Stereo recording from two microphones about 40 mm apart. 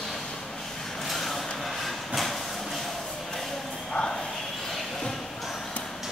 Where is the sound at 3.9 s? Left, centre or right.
Left.